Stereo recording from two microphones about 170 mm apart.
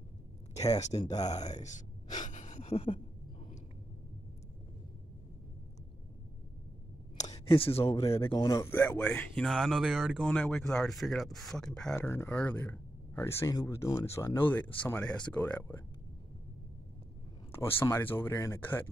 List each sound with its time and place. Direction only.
0.9 s speech: 20° left (ahead or behind)
1.3 s speech: 40° left (ahead or behind)
2.2 s gasp: 45° left (ahead or behind)
7.3 s speech: 30° left (ahead or behind)
7.9 s speech: 15° left (ahead or behind)
17.5 s speech: 15° left (ahead or behind)